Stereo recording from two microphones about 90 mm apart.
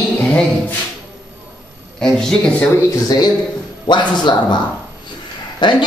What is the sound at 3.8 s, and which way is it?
Speech, 55° left (ahead or behind).